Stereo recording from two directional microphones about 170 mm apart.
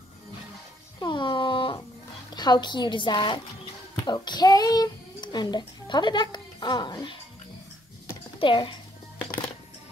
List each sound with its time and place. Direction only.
1.0 s music: 30° left (ahead or behind)
2.3 s a child's voice: 25° left (ahead or behind)
8.4 s speech: 30° left (ahead or behind)